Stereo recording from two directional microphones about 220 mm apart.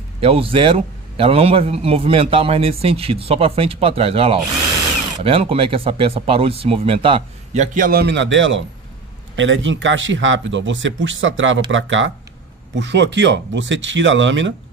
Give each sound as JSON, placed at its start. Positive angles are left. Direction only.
{"t": 0.2, "sound": "a man's voice", "side_deg": -25}